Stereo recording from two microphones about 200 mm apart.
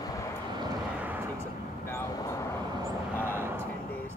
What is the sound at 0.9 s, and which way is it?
Artillery fire, 10° right (ahead or behind).